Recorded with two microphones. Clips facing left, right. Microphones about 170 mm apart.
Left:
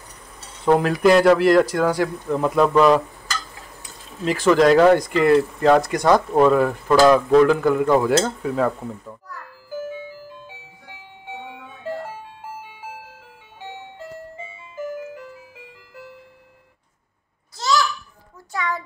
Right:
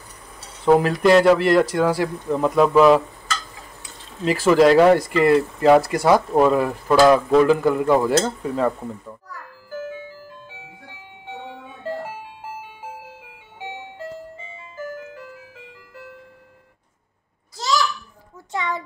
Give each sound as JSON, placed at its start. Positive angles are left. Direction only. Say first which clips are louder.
{"t": 0.7, "sound": "speech", "louder": "right 1 dB", "side_deg": 0}
{"t": 4.2, "sound": "speech", "louder": "right 1 dB", "side_deg": -5}
{"t": 9.7, "sound": "music", "louder": "left 1 dB", "side_deg": 10}
{"t": 17.6, "sound": "babbling", "louder": "left 1 dB", "side_deg": -10}
{"t": 18.5, "sound": "a sound", "louder": "even", "side_deg": -20}